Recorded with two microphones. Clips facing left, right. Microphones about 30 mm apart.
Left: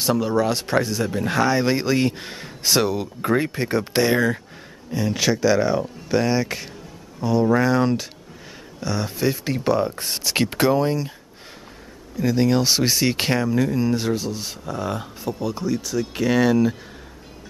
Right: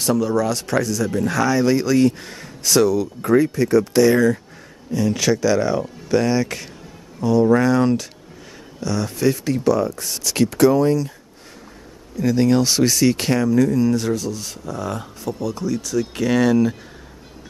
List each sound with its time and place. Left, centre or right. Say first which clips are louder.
0.0 s speech: right 1 dB; left
4.9 s speech: right 3 dB; centre
12.2 s speech: right 2 dB; centre
12.8 s speech: right 3 dB; left; by 16.7 s centre